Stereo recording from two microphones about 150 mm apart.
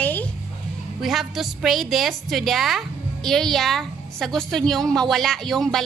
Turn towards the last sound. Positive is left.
turn(degrees=0)  # may be behind; listen again after turning